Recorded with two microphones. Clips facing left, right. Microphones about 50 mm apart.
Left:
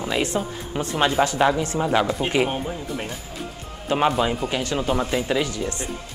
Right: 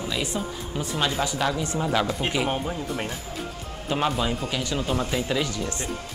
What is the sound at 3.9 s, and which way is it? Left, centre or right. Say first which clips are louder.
Speech: left 5 dB; centre.